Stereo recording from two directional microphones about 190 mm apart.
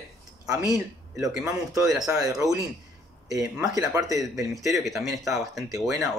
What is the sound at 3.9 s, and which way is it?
Speech, 15° right (ahead or behind).